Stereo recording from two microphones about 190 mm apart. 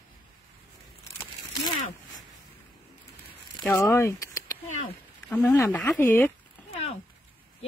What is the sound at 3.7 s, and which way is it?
Speech, 15° left (ahead or behind).